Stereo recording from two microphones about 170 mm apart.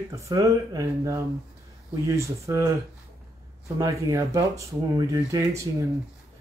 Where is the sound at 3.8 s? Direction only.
20° right (ahead or behind).